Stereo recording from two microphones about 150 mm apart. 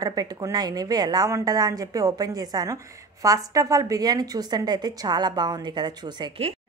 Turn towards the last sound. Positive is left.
turn(degrees=-30)  # may be behind; listen again after turning